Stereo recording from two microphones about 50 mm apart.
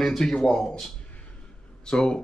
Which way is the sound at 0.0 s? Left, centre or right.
Centre.